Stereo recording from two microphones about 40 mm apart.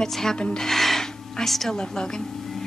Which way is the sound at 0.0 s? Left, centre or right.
Centre.